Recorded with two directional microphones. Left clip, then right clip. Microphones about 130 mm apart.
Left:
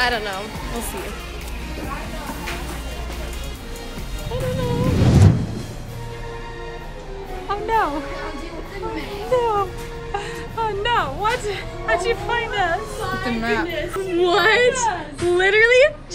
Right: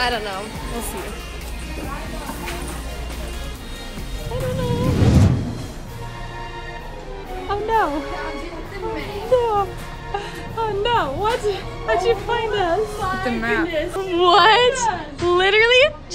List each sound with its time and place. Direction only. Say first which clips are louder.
0.0 s speech: left 1 dB; 15° left (ahead or behind)
4.6 s music: even; centre (ahead or behind)
7.4 s speech: right 1 dB; 20° right (ahead or behind)
9.3 s speech: right 1 dB; 15° right (ahead or behind)
13.4 s a woman's voice: right 1 dB; 25° left (ahead or behind)
14.1 s speech: right 3 dB; 15° right (ahead or behind)
14.9 s a woman's voice: right 1 dB; 25° left (ahead or behind)
15.3 s speech: even; 20° right (ahead or behind)